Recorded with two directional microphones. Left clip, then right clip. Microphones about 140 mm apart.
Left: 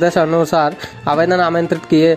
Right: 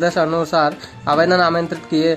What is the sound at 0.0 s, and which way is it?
A man's voice, 40° left (ahead or behind).